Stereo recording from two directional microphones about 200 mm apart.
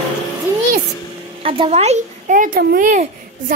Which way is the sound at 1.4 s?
25° right (ahead or behind).